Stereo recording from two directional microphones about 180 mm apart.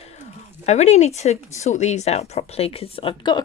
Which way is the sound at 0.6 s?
40° left (ahead or behind).